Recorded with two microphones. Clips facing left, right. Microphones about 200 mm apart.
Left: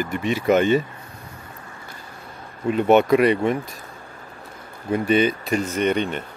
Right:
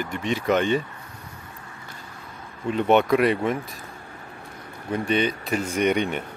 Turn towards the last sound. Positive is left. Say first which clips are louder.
# left 1 dB
turn(degrees=-10)  # may be behind; listen again after turning